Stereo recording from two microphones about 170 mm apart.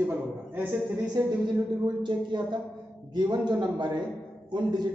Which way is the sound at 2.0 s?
25° right (ahead or behind).